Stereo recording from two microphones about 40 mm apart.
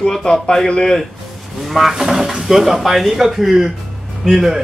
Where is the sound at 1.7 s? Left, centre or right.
Centre.